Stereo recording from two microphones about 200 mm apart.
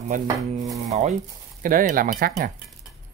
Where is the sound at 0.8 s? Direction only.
35° right (ahead or behind).